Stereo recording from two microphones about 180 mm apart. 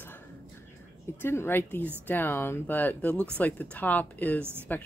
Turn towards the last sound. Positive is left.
turn(degrees=-10)  # may be behind; listen again after turning